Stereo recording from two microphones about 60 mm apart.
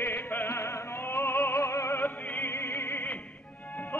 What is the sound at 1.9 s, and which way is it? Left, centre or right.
Opera, left.